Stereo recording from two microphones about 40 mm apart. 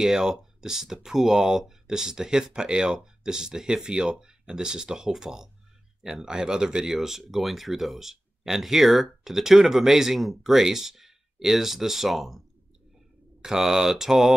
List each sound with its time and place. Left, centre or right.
0.0 s speech: centre